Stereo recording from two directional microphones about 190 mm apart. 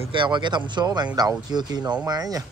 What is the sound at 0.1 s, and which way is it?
Speech, 25° right (ahead or behind).